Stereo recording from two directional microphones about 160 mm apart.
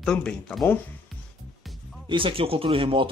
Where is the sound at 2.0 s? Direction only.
30° right (ahead or behind).